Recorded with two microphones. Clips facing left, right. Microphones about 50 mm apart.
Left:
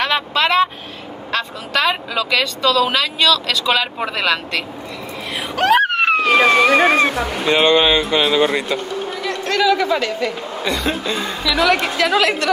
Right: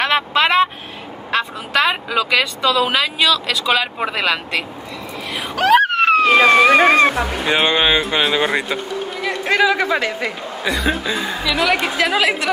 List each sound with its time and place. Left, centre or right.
0.0 s vehicle: centre
1.3 s speech: centre
5.3 s a sound: centre
6.2 s speech: right
6.8 s music: right
7.4 s a woman's voice: centre
9.2 s a sound: centre
9.9 s a woman's voice: centre